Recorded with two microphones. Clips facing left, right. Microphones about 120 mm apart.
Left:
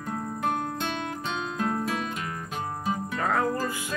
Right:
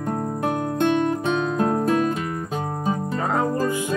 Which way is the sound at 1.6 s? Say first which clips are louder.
Right 3 dB; 40° right (ahead or behind).